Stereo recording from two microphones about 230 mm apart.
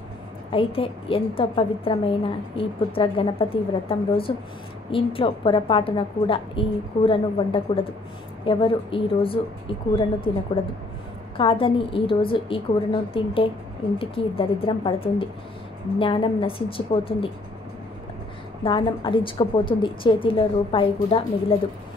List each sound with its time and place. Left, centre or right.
0.5 s a woman's voice: left
18.6 s a woman's voice: left